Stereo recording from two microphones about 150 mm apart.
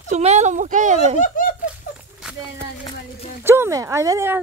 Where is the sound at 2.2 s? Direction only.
5° right (ahead or behind).